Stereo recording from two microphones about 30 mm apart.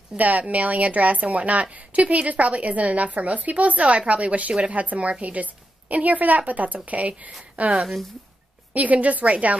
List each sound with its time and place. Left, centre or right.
0.2 s a woman's voice: right
8.7 s a woman's voice: right